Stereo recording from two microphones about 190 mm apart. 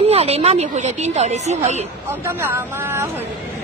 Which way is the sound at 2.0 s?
10° right (ahead or behind).